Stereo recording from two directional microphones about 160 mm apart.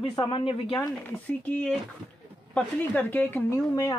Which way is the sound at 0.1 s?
30° left (ahead or behind).